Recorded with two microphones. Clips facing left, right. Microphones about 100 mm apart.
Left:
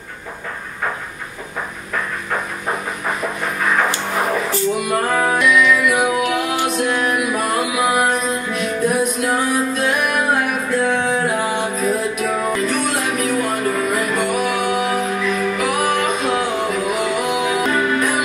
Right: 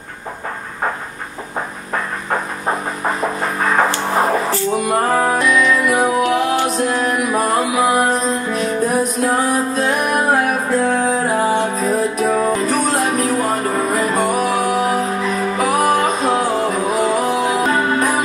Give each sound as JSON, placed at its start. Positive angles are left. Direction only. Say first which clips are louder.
{"t": 4.7, "sound": "music", "louder": "right 2 dB", "side_deg": -35}